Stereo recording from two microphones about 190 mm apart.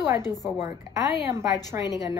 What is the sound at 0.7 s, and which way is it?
Speech, 15° right (ahead or behind).